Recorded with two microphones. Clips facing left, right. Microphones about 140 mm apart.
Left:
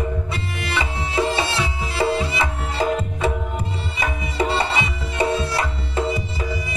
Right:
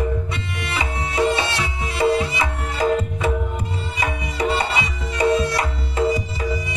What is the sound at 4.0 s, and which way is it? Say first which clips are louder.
Music: even; 30° left (ahead or behind).